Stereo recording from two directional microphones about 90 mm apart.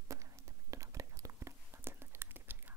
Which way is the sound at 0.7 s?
35° right (ahead or behind).